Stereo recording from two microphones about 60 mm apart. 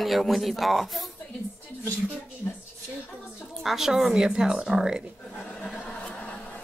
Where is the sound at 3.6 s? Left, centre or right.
Centre.